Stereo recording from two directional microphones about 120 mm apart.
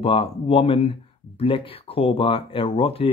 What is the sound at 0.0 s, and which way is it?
Speech, 50° left (ahead or behind).